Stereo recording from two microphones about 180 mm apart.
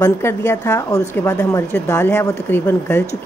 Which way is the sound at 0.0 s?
15° left (ahead or behind).